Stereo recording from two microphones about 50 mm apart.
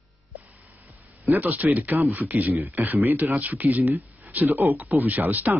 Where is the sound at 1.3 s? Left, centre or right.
Right.